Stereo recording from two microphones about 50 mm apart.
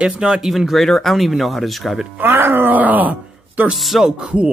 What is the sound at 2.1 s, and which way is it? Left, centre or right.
Speech, right.